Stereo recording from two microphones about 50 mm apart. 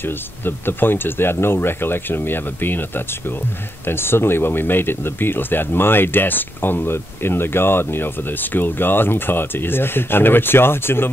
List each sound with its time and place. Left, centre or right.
0.0 s speech: left